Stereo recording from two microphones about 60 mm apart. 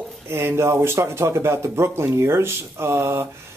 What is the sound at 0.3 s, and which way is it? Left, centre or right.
Speech, right.